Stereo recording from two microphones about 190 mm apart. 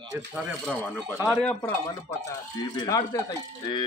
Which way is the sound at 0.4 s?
5° left (ahead or behind).